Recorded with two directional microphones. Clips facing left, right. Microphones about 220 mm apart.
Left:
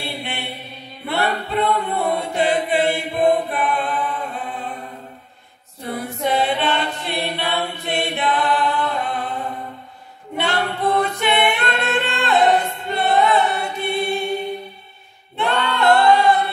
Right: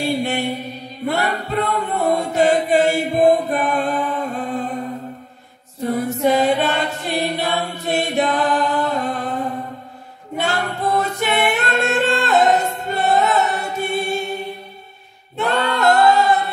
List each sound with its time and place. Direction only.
0.0 s mantra: 45° right (ahead or behind)
1.0 s chant: 45° right (ahead or behind)
5.8 s a capella: 45° right (ahead or behind)
6.2 s choir: 45° right (ahead or behind)
9.0 s music: 45° right (ahead or behind)
10.4 s singing: 45° right (ahead or behind)
15.3 s singing: 45° right (ahead or behind)